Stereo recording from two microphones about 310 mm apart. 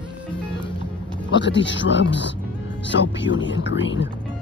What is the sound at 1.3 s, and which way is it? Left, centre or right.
Speech, left.